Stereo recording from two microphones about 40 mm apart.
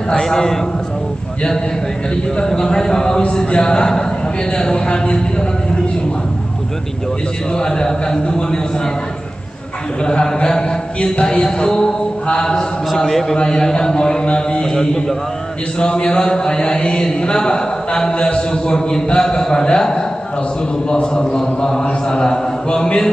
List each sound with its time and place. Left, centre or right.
0.2 s a man's voice: centre
2.3 s a man's voice: centre
3.3 s mantra: left
7.5 s mantra: centre
10.2 s a man's voice: centre
11.1 s mantra: left
13.4 s a man's voice: centre
15.8 s mantra: left
20.9 s mantra: centre